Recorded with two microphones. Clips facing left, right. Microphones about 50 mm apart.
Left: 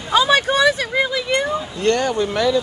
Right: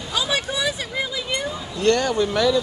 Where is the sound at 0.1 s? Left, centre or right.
Left.